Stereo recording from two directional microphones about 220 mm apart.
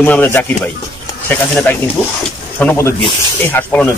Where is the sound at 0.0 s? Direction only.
10° left (ahead or behind).